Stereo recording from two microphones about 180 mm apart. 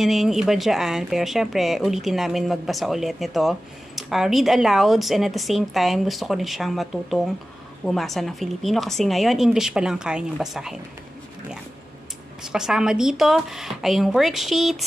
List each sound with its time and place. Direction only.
0.0 s speech: centre (ahead or behind)
12.5 s speech: 5° right (ahead or behind)